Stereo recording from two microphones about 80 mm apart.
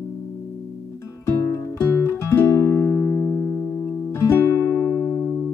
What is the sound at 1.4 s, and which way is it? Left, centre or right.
Music, left.